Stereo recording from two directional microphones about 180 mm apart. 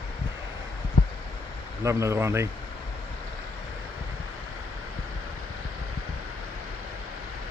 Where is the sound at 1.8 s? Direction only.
15° right (ahead or behind).